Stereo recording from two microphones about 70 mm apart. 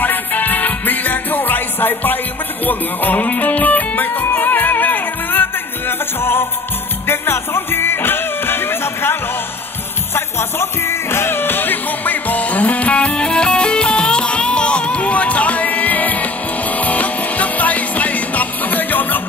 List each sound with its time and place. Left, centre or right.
0.0 s music: left